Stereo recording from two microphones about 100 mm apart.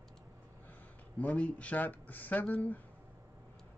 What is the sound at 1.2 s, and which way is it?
Speech, 15° left (ahead or behind).